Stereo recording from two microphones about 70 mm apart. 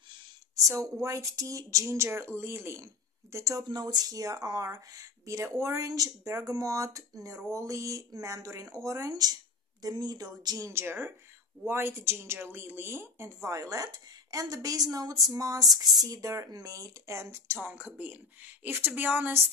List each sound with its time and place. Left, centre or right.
1.0 s speech: right
3.5 s speech: right
10.7 s a woman's voice: right
13.6 s a woman's voice: right
17.6 s a woman's voice: right